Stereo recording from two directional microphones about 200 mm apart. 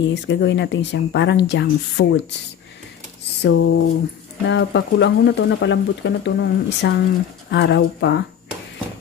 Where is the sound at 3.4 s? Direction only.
75° left (ahead or behind).